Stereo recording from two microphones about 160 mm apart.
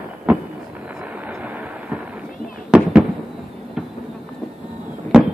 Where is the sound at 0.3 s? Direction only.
10° right (ahead or behind).